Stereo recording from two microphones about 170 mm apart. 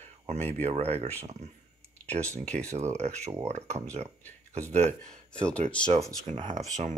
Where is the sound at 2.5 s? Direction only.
40° right (ahead or behind).